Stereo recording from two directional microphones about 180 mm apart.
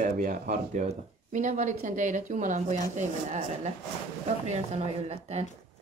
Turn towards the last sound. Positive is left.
turn(degrees=-35)  # may be behind; listen again after turning